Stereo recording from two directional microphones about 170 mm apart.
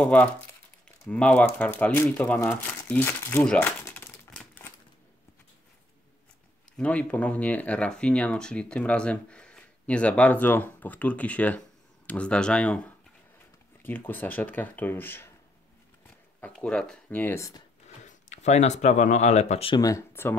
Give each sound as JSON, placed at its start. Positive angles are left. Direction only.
{"t": 0.0, "sound": "speech", "side_deg": 5}
{"t": 6.8, "sound": "speech", "side_deg": 10}
{"t": 16.3, "sound": "speech", "side_deg": 5}
{"t": 17.8, "sound": "speech", "side_deg": 45}
{"t": 19.7, "sound": "speech", "side_deg": 20}